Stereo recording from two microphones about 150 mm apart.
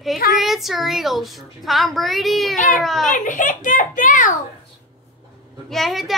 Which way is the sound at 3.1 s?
60° left (ahead or behind).